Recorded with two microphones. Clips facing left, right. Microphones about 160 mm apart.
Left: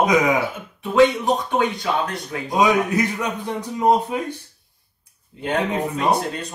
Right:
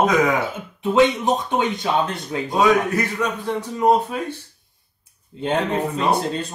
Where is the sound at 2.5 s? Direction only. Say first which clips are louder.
Even; 15° left (ahead or behind).